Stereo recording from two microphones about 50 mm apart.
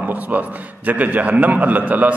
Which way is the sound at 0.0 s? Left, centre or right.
Right.